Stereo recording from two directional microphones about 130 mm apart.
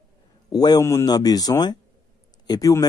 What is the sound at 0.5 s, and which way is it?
Speech, 30° left (ahead or behind).